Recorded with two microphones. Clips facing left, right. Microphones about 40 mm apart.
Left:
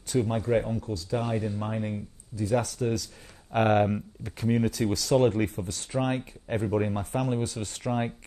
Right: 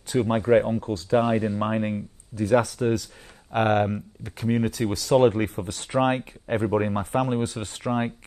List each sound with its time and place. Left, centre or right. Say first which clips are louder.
0.1 s speech: right 6 dB; right
2.3 s speech: right 6 dB; right
2.6 s speech: right 5 dB; right
3.5 s speech: right 1 dB; centre; by 5.7 s right
5.7 s speech: right 6 dB; right
6.1 s speech: right 4 dB; right